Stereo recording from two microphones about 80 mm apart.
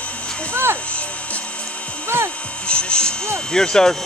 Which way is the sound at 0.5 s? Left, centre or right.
Right.